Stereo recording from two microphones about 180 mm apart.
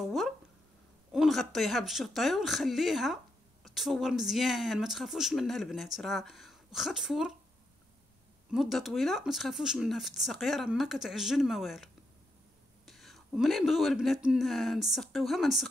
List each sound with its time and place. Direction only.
0.0 s a woman's voice: centre (ahead or behind)
8.5 s a woman's voice: centre (ahead or behind)